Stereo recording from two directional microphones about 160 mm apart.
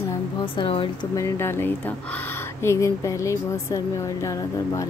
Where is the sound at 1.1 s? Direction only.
15° left (ahead or behind).